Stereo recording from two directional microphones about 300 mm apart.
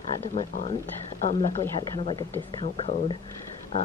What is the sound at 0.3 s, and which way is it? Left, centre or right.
Speech, left.